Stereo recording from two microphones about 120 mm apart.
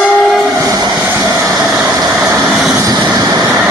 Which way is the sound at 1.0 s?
20° right (ahead or behind).